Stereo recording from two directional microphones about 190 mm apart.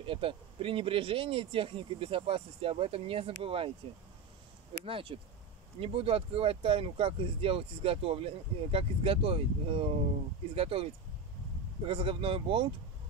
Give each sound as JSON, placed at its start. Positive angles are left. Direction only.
{"t": 0.0, "sound": "speech", "side_deg": -30}
{"t": 4.8, "sound": "speech", "side_deg": -30}